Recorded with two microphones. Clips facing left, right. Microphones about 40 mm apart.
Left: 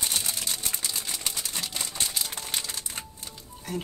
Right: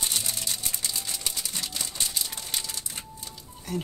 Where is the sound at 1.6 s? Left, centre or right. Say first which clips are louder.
Left 1 dB; left.